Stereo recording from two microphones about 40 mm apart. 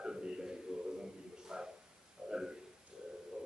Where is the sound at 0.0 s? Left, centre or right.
Centre.